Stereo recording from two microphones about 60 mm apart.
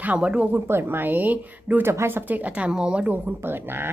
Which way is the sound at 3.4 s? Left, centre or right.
Right.